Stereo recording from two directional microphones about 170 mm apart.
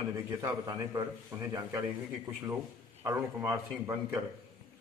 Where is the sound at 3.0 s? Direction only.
15° right (ahead or behind).